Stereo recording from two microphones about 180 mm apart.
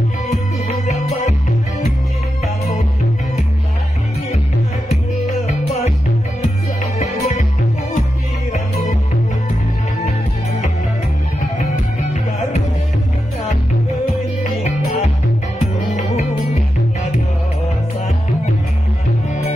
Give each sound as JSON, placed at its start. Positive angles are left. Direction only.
{"t": 5.5, "sound": "music", "side_deg": 40}
{"t": 14.6, "sound": "music", "side_deg": 40}